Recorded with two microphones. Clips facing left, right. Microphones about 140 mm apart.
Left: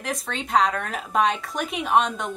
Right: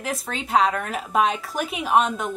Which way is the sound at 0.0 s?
5° right (ahead or behind).